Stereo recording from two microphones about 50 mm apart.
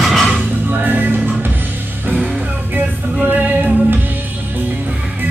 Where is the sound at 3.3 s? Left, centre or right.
Right.